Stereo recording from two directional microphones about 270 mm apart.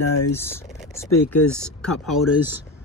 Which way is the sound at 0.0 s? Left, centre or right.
Left.